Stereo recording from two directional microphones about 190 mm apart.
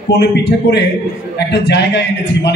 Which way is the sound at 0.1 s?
65° left (ahead or behind).